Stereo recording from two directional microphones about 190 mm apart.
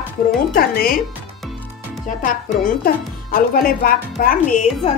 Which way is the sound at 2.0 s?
45° left (ahead or behind).